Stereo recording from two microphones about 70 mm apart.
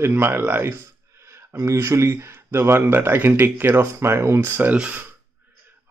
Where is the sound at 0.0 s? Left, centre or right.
Right.